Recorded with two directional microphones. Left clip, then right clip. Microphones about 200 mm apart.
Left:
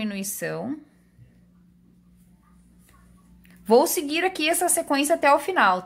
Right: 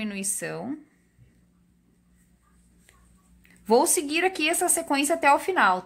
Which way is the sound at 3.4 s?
Centre (ahead or behind).